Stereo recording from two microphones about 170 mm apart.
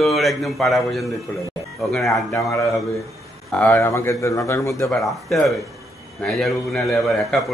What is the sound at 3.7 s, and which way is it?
A man's voice, 15° left (ahead or behind).